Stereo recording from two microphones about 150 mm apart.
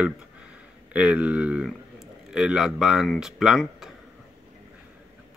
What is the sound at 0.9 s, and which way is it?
A man's voice, 10° right (ahead or behind).